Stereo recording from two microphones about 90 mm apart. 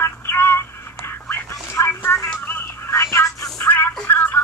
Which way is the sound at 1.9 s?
25° left (ahead or behind).